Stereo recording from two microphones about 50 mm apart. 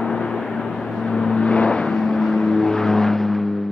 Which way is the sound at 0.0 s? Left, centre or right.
Centre.